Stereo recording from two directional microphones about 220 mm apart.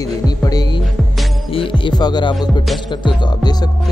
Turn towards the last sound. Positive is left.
turn(degrees=20)  # may be behind; listen again after turning